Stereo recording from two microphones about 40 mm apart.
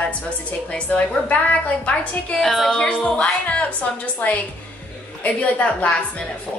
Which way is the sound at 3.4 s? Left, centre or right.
Left.